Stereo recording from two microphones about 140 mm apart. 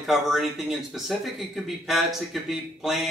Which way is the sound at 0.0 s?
Centre (ahead or behind).